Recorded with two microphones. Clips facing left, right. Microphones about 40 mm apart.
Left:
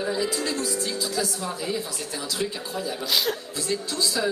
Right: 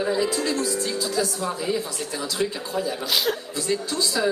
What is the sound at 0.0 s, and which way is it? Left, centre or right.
A woman's voice, centre.